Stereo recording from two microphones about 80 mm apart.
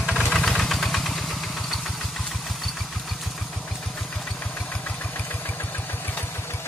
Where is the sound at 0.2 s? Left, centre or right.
Centre.